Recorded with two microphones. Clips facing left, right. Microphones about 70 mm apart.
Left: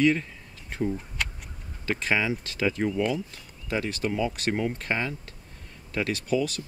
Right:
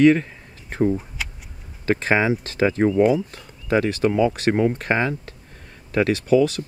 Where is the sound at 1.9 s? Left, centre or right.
Right.